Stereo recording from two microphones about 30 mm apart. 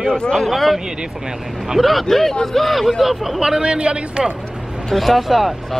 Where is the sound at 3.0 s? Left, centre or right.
Centre.